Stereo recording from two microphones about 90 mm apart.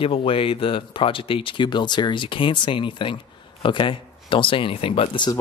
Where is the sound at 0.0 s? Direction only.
90° left.